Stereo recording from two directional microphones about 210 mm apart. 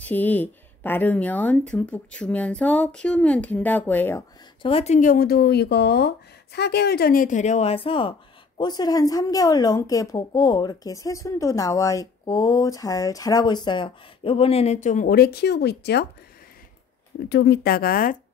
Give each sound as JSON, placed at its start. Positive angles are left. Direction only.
{"t": 0.0, "sound": "speech", "side_deg": 10}
{"t": 4.6, "sound": "a woman's voice", "side_deg": 25}
{"t": 17.3, "sound": "speech", "side_deg": 55}